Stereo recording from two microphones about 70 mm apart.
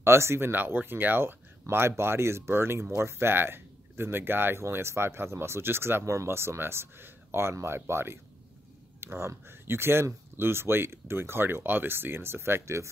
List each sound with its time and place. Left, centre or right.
0.0 s speech: right